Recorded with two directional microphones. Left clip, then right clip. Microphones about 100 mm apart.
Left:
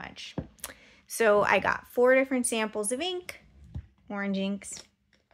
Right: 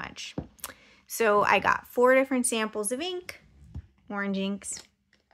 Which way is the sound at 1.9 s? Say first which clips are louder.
Even; 25° right (ahead or behind).